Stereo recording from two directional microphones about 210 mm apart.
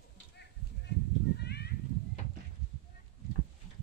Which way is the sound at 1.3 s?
50° left (ahead or behind).